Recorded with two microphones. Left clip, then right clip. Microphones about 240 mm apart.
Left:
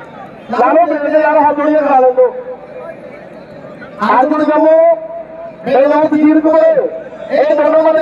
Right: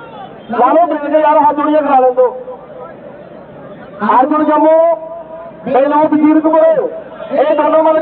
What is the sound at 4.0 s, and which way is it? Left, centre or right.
A man's voice, left.